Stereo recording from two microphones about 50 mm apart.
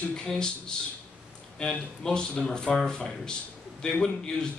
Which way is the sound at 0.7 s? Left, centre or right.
Centre.